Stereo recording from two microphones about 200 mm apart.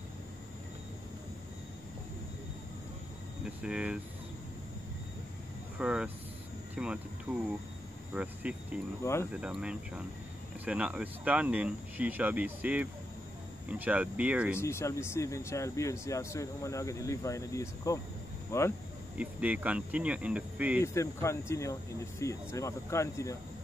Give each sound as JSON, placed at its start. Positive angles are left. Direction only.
{"t": 3.4, "sound": "speech", "side_deg": -5}
{"t": 5.8, "sound": "speech", "side_deg": -5}
{"t": 9.0, "sound": "speech", "side_deg": 15}
{"t": 9.3, "sound": "speech", "side_deg": -5}
{"t": 14.6, "sound": "speech", "side_deg": 15}
{"t": 19.1, "sound": "speech", "side_deg": -5}
{"t": 20.8, "sound": "speech", "side_deg": 15}